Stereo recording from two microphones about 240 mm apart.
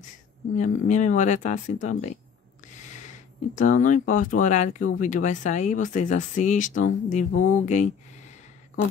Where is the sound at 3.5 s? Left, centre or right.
Left.